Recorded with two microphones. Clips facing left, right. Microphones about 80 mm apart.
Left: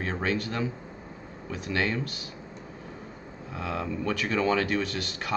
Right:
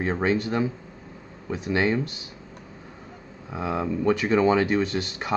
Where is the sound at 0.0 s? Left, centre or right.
Right.